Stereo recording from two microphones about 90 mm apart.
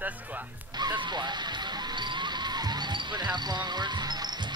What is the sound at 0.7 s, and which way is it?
Music, 55° right (ahead or behind).